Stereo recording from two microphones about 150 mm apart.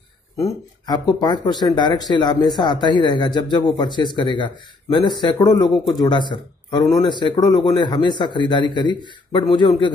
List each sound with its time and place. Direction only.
0.4 s a man's voice: 30° left (ahead or behind)